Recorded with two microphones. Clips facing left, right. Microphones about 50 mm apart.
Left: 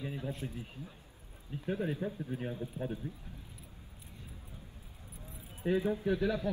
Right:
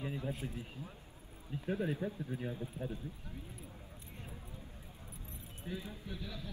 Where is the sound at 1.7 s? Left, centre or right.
Left.